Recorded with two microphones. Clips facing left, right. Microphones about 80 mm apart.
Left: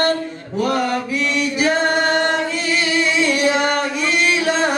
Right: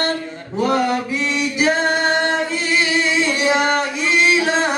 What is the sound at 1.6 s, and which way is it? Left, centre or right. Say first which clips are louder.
Singing: even; right.